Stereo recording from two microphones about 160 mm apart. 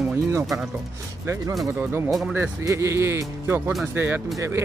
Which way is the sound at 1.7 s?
15° right (ahead or behind).